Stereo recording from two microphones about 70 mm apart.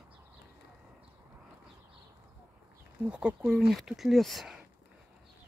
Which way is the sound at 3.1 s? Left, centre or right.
Centre.